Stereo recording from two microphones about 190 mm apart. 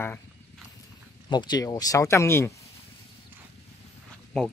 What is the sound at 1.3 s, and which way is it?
Speech, 20° left (ahead or behind).